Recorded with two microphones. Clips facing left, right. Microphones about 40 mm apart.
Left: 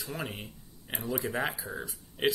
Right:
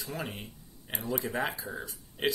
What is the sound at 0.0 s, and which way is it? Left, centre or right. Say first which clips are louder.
Speech: even; centre.